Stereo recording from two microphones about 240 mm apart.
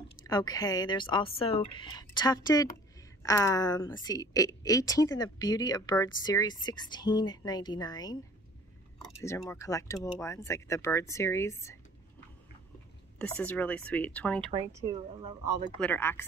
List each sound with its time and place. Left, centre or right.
0.3 s a woman's voice: centre
9.5 s a woman's voice: centre
13.2 s speech: centre
14.5 s speech: centre
15.8 s a woman's voice: centre